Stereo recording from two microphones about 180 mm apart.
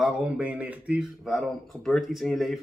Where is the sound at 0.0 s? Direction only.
5° right (ahead or behind).